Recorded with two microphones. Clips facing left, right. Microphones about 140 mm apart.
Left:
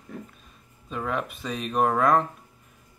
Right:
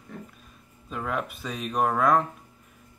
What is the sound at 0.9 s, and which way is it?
Speech, centre (ahead or behind).